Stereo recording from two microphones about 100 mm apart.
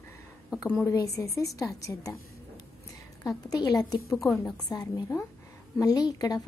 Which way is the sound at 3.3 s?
40° left (ahead or behind).